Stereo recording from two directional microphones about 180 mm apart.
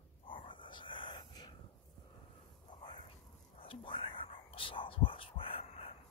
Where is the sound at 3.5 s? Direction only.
30° left (ahead or behind).